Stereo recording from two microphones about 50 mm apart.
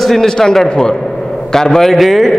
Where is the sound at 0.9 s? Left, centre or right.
Centre.